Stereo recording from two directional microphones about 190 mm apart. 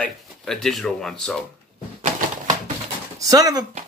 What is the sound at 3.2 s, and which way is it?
Speech, 20° right (ahead or behind).